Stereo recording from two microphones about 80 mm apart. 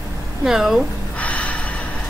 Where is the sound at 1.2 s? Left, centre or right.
Centre.